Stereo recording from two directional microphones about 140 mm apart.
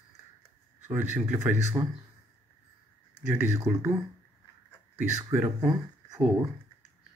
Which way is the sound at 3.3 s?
15° right (ahead or behind).